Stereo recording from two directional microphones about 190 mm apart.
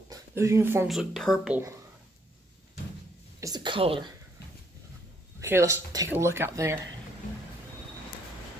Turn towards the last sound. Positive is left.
turn(degrees=-15)  # may be behind; listen again after turning